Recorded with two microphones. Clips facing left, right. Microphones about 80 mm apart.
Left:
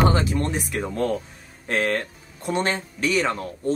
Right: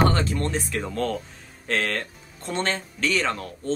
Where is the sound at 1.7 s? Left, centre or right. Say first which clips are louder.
Left 3 dB; centre.